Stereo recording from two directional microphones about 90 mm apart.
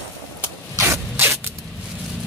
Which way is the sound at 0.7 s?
30° right (ahead or behind).